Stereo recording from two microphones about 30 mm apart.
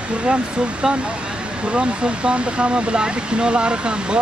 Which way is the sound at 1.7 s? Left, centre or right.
Right.